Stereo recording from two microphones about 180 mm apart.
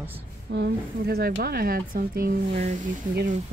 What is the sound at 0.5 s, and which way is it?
Speech, 65° right (ahead or behind).